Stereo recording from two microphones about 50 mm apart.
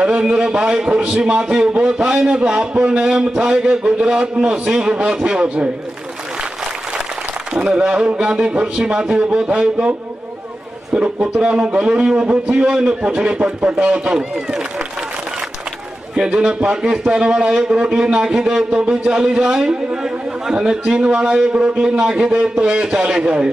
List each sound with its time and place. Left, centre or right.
0.0 s a man's voice: centre
7.5 s a man's voice: centre
11.0 s a man's voice: right
16.3 s a man's voice: right